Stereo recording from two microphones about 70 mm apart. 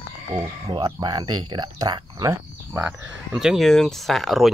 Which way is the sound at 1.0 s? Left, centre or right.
Right.